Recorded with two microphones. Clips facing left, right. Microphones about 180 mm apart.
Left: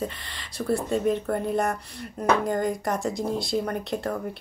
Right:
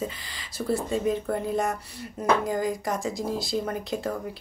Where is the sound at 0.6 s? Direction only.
Centre (ahead or behind).